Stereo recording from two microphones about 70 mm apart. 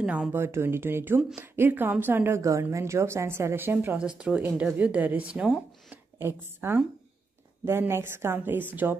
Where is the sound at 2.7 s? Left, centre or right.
Right.